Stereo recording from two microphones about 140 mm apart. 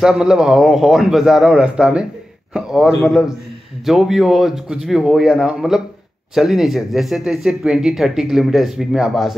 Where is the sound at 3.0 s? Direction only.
Centre (ahead or behind).